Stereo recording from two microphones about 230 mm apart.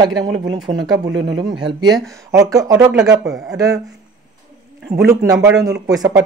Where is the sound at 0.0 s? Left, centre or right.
Centre.